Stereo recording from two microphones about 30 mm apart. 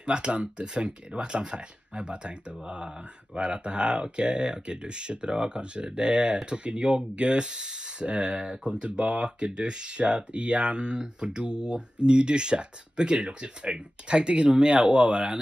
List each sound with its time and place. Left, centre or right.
0.0 s speech: right